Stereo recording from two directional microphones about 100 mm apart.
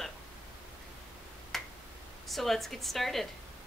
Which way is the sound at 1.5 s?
5° left (ahead or behind).